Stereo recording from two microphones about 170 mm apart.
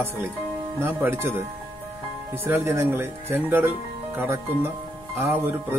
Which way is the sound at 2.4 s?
15° right (ahead or behind).